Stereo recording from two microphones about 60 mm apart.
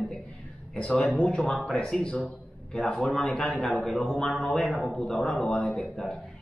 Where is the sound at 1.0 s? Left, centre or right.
Centre.